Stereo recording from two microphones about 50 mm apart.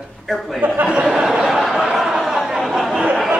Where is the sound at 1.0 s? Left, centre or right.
Centre.